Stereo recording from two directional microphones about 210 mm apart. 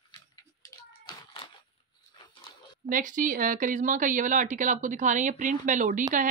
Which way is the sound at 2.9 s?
40° right (ahead or behind).